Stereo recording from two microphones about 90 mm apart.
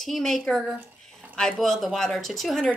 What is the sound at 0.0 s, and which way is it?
A woman's voice, 5° left (ahead or behind).